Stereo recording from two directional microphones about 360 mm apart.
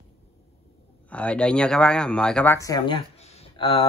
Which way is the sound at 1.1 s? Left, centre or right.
Centre.